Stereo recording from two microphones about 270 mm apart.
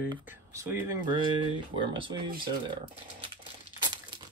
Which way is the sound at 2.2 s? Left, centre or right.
Right.